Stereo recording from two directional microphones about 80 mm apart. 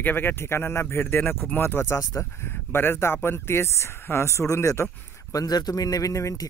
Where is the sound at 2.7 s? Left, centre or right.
Left.